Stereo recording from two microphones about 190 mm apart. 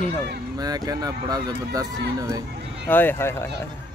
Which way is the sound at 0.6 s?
20° right (ahead or behind).